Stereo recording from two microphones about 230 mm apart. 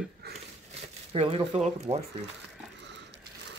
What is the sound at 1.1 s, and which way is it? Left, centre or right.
Speech, right.